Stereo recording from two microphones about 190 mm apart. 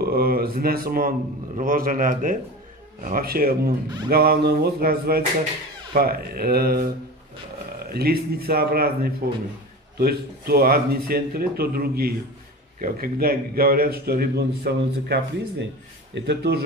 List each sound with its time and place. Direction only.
0.0 s a man's voice: 55° right (ahead or behind)
7.9 s a man's voice: 55° right (ahead or behind)
16.2 s speech: 65° right (ahead or behind)